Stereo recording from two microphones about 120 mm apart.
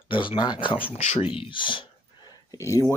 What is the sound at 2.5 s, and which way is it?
Speech, 25° left (ahead or behind).